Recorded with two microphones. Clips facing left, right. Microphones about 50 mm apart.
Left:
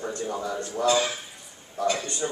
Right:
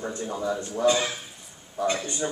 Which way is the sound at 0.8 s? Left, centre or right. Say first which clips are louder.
Even; right.